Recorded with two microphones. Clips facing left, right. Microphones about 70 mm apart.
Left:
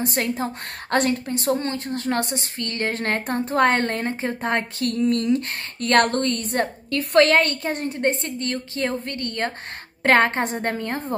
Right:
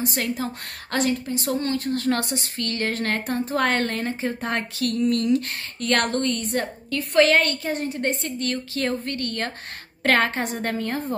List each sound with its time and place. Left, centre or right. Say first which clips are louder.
0.0 s a woman's voice: left 2 dB; left
1.2 s a woman's voice: left 2 dB; left